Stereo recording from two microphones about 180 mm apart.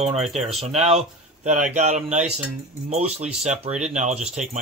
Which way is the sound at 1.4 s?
40° right (ahead or behind).